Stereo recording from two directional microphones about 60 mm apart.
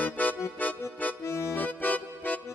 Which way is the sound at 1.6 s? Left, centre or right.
Left.